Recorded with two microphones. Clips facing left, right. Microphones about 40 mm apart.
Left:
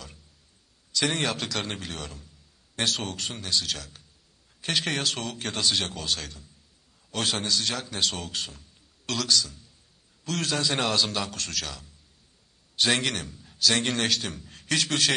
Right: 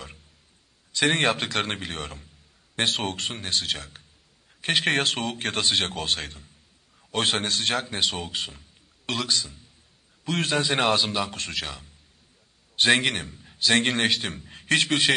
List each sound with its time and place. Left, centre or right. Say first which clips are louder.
0.9 s a man's voice: right 5 dB; right
8.0 s a man's voice: right 2 dB; right